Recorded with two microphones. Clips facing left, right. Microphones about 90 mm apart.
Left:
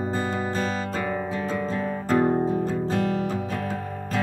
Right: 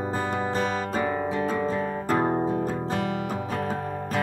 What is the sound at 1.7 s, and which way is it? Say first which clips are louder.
Music: left 1 dB; 15° right (ahead or behind).